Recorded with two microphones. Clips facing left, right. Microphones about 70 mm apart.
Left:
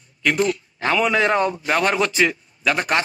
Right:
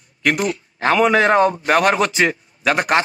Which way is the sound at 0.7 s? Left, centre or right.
Right.